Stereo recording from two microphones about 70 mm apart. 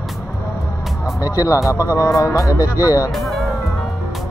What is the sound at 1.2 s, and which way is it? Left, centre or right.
Speech, left.